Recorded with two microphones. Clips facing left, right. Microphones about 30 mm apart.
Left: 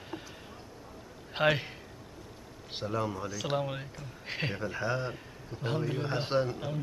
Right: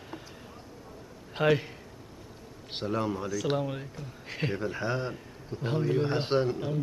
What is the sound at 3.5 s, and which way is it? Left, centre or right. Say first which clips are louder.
Speech: right 1 dB; centre.